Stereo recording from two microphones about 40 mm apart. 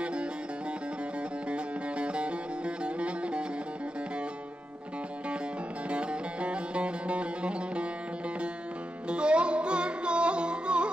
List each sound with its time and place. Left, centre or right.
0.0 s music: right
1.5 s music: right
5.9 s music: right
9.1 s music: right